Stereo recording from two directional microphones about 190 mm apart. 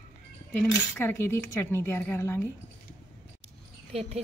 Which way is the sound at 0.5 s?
10° left (ahead or behind).